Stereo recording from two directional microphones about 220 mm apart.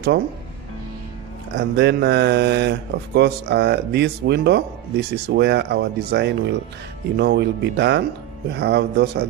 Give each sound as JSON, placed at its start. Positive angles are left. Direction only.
{"t": 1.6, "sound": "speech", "side_deg": -50}